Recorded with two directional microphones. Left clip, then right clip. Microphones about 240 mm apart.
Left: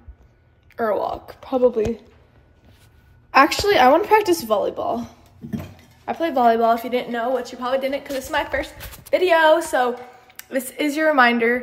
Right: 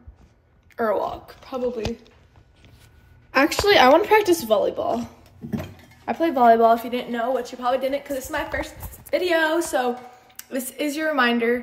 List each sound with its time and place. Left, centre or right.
0.7 s a woman's voice: centre
3.3 s a woman's voice: centre